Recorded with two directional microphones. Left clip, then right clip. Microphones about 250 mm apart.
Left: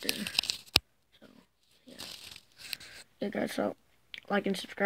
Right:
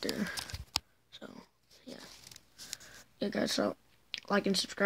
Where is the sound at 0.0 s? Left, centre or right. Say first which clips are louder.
Left 2 dB; centre.